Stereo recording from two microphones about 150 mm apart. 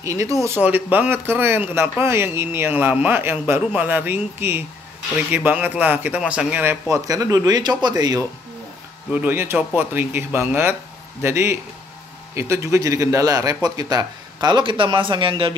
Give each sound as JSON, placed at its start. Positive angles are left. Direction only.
{"t": 0.0, "sound": "a man's voice", "side_deg": -20}
{"t": 9.1, "sound": "a man's voice", "side_deg": -10}